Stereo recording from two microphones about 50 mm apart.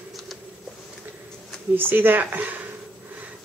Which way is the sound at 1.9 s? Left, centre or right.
Right.